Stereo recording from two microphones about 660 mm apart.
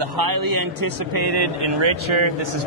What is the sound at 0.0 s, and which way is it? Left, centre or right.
Speech, right.